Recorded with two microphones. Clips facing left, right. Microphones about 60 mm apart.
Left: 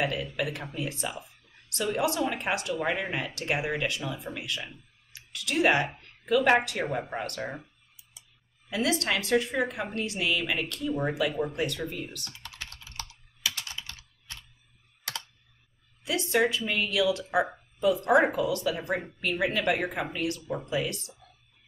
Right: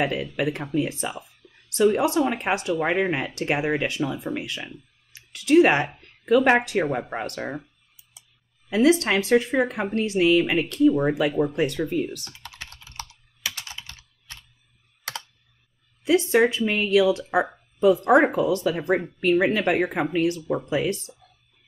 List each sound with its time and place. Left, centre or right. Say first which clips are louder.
0.0 s speech: right 5 dB; right
8.6 s speech: right 9 dB; right
12.5 s computer keyboard: right 2 dB; right
16.0 s speech: right 7 dB; right